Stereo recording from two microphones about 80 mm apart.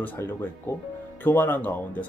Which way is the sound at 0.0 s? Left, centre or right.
Left.